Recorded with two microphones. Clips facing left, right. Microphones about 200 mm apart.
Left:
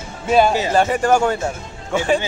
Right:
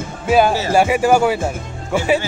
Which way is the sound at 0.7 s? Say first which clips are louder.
Right 2 dB; 10° right (ahead or behind).